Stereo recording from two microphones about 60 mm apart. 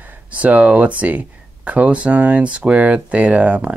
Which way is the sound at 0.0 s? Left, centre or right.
Right.